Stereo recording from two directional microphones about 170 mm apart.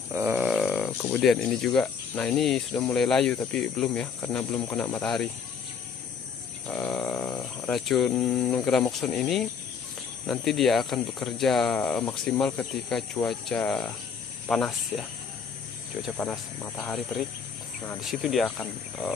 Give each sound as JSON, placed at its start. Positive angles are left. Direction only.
{"t": 0.1, "sound": "a sound", "side_deg": -10}
{"t": 1.0, "sound": "speech", "side_deg": 5}
{"t": 4.6, "sound": "cricket", "side_deg": 10}
{"t": 4.9, "sound": "speech", "side_deg": 5}
{"t": 6.7, "sound": "a sound", "side_deg": 10}
{"t": 7.6, "sound": "speech", "side_deg": 0}
{"t": 16.6, "sound": "cricket", "side_deg": 20}
{"t": 18.0, "sound": "speech", "side_deg": 0}